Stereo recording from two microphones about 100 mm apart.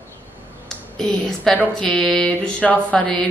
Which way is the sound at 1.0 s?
5° left (ahead or behind).